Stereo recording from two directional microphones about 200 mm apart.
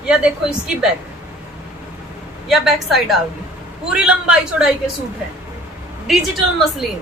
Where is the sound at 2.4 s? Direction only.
Centre (ahead or behind).